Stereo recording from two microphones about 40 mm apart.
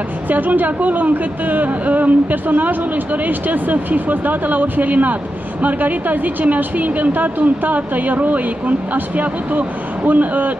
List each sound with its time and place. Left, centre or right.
0.3 s speech: right